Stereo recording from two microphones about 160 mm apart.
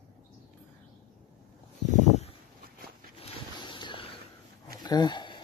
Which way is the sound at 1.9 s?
45° left (ahead or behind).